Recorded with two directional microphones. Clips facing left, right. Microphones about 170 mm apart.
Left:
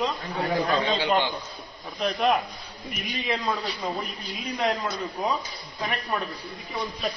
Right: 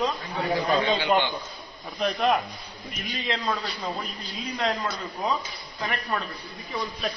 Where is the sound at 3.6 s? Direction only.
15° left (ahead or behind).